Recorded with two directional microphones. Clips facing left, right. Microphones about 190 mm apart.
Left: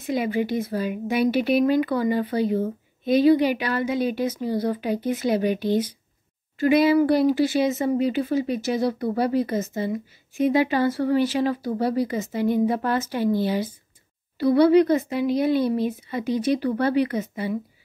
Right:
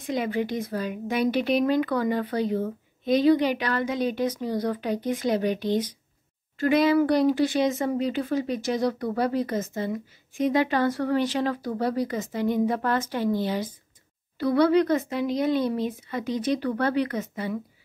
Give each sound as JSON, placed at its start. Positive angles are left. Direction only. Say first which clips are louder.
{"t": 0.0, "sound": "speech", "louder": "left 3 dB", "side_deg": 10}